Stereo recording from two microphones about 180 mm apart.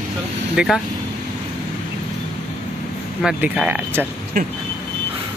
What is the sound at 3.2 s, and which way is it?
Speech, 5° right (ahead or behind).